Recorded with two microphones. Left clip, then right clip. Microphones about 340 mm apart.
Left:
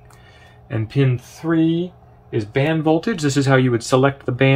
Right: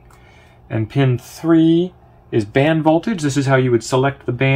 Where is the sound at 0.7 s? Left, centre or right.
Centre.